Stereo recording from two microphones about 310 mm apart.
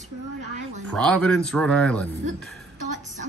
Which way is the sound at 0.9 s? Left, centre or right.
Centre.